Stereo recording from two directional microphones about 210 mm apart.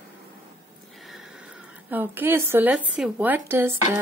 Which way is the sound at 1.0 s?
Centre (ahead or behind).